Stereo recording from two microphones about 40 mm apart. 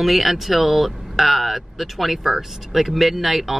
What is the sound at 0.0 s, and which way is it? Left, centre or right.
A woman's voice, centre.